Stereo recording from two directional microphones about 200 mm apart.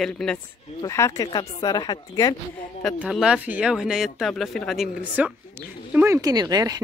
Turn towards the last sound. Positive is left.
turn(degrees=-20)  # may be behind; listen again after turning